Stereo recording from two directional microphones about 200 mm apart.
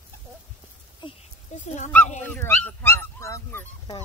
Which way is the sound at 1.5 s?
35° left (ahead or behind).